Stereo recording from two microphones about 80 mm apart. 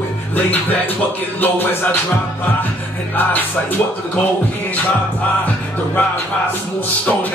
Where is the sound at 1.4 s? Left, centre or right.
Left.